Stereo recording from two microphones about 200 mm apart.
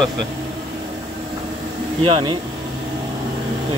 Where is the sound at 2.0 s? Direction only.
25° right (ahead or behind).